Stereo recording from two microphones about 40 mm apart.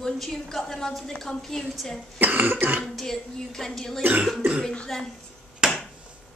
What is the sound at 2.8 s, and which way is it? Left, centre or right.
A woman's voice, centre.